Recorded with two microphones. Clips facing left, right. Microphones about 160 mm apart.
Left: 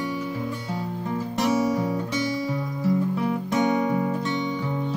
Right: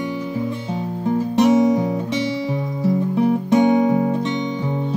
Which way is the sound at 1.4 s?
20° right (ahead or behind).